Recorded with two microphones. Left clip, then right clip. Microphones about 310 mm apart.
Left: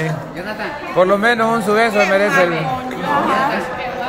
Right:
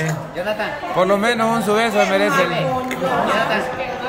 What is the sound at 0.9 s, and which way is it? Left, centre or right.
A man's voice, centre.